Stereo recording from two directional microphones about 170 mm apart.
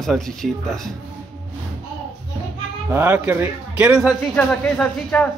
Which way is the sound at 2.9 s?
10° right (ahead or behind).